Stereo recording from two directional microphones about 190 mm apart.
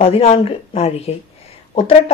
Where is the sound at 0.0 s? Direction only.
30° left (ahead or behind).